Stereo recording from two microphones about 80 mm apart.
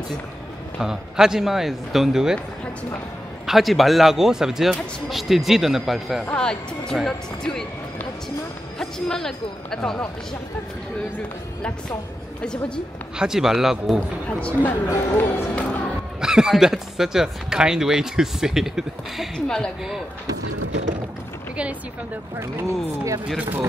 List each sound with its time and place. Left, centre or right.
0.7 s speech: centre
3.4 s speech: centre
6.2 s speech: centre
8.7 s speech: centre
12.4 s speech: centre
13.2 s speech: centre
14.2 s speech: centre
14.7 s speech: left
16.2 s speech: centre
19.3 s speech: centre
22.6 s speech: right
23.3 s speech: right